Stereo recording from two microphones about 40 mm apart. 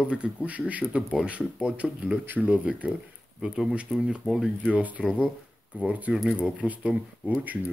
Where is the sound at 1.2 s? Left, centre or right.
Right.